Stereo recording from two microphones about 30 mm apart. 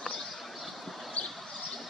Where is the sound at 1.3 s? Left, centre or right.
Centre.